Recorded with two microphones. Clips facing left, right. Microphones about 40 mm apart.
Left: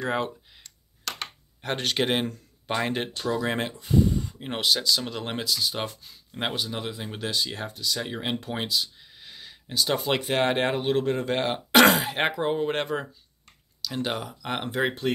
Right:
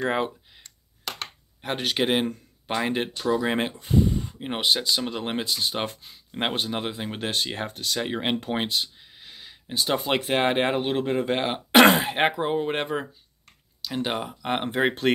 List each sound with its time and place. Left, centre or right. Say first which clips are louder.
1.6 s speech: right 1 dB; centre
3.8 s a sound: left 2 dB; right
4.4 s speech: right 2 dB; centre
4.6 s speech: even; right
5.0 s speech: right 3 dB; centre
5.4 s speech: left 1 dB; right
8.0 s speech: right 4 dB; right
9.2 s a sound: even; centre
10.0 s speech: right 2 dB; centre